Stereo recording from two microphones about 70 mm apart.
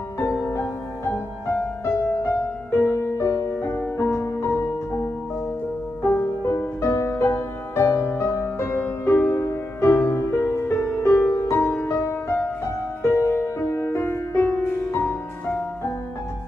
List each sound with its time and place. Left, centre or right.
0.2 s music: left